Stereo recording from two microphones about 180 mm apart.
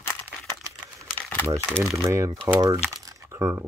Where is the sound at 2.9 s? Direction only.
20° right (ahead or behind).